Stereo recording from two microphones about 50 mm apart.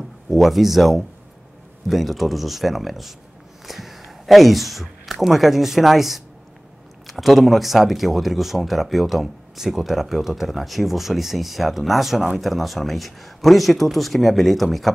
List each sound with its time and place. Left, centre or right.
0.3 s speech: centre